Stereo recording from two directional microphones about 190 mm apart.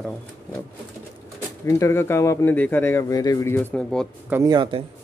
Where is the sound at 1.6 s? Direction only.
15° left (ahead or behind).